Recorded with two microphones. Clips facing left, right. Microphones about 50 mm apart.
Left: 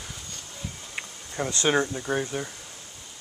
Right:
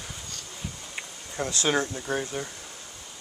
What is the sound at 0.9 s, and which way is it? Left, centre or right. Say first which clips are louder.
Insect: left 2 dB; centre.